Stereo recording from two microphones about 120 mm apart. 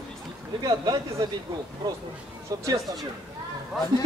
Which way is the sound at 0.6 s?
30° right (ahead or behind).